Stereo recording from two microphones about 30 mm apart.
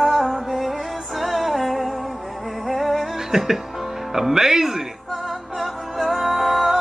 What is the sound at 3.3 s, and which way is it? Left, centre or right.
Music, centre.